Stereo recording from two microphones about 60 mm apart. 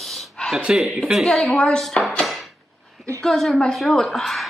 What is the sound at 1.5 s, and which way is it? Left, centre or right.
Speech, centre.